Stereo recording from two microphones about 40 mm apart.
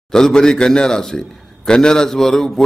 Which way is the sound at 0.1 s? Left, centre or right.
Centre.